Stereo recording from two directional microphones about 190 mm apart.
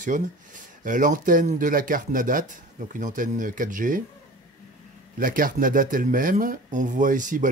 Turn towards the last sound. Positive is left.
turn(degrees=-45)  # may be behind; listen again after turning